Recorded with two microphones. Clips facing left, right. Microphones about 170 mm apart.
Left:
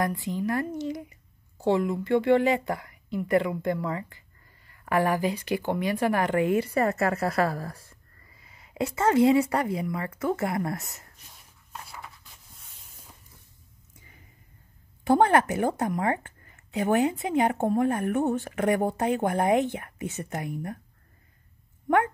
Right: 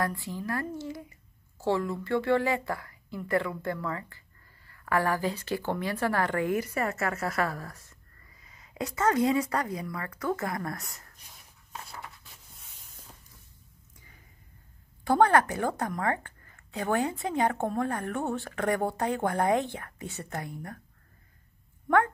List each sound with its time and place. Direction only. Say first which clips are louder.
0.0 s a woman's voice: left 4 dB; 20° left (ahead or behind)
15.0 s a woman's voice: left 2 dB; 20° left (ahead or behind)
21.8 s speech: left 1 dB; 20° left (ahead or behind)